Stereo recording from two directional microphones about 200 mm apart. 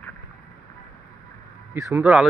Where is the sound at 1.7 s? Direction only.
15° right (ahead or behind).